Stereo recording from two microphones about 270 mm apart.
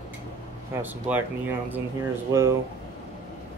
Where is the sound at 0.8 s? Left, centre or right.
Centre.